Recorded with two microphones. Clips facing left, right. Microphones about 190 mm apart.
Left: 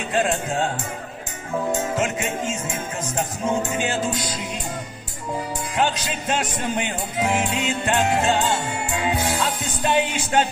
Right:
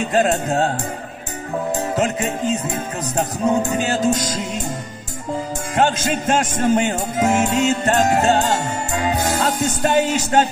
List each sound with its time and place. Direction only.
0.1 s music: 40° right (ahead or behind)
1.7 s music: 35° right (ahead or behind)
5.8 s music: 45° right (ahead or behind)